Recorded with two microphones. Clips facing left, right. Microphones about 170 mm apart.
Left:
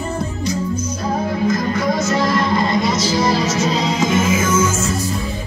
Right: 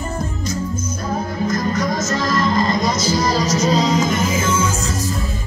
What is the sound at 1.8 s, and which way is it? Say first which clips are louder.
Music: left 3 dB; 40° right (ahead or behind).